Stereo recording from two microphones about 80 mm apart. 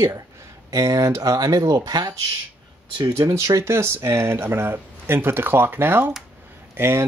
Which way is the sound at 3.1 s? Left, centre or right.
Right.